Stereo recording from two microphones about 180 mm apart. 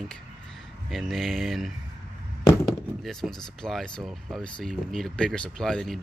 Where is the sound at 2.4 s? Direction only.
20° left (ahead or behind).